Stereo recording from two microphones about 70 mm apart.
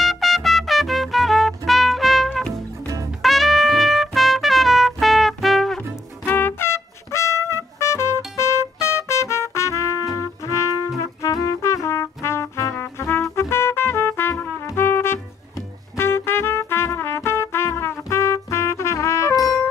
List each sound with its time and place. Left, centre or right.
0.0 s trumpet: centre
2.3 s music: centre
3.2 s trumpet: centre
6.2 s brass instrument: left
8.4 s music: left
12.8 s trumpet: left